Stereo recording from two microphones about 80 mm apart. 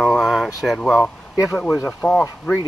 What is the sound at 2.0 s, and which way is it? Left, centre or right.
Speech, centre.